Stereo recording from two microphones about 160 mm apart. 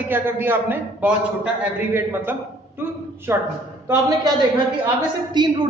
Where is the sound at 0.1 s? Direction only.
15° right (ahead or behind).